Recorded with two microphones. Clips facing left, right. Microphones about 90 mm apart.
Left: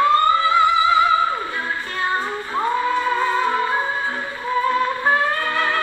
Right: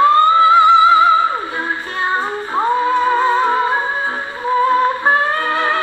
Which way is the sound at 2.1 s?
30° right (ahead or behind).